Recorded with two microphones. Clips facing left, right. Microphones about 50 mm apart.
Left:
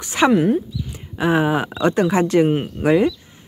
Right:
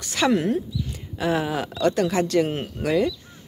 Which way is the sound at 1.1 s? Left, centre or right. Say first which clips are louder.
Left 6 dB; left.